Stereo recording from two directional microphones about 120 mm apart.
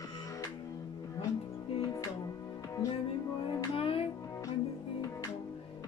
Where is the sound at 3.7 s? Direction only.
50° left (ahead or behind).